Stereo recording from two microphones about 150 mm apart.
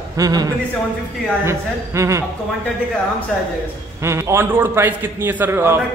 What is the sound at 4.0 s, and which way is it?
A man's voice, 20° right (ahead or behind).